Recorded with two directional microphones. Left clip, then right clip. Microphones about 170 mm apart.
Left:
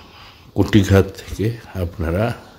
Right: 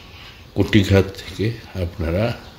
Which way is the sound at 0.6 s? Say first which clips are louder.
Left 1 dB; 20° left (ahead or behind).